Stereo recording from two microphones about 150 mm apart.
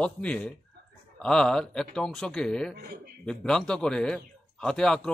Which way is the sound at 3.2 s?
5° left (ahead or behind).